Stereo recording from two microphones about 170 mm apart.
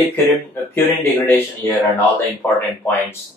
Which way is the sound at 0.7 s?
15° left (ahead or behind).